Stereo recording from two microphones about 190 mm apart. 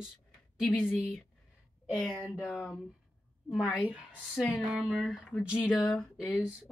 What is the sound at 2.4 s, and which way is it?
Speech, 5° left (ahead or behind).